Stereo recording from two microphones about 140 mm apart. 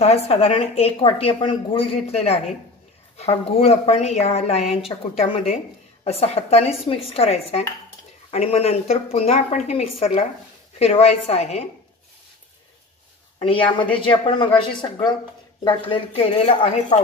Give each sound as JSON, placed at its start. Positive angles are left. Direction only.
{"t": 0.0, "sound": "a woman's voice", "side_deg": 45}
{"t": 6.0, "sound": "a woman's voice", "side_deg": 50}
{"t": 13.4, "sound": "a woman's voice", "side_deg": 40}